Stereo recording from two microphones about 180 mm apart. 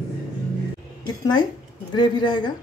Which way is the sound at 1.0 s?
25° left (ahead or behind).